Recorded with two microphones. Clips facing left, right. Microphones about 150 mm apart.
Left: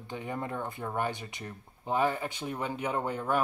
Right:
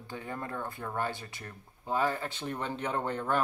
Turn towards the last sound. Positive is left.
turn(degrees=10)  # may be behind; listen again after turning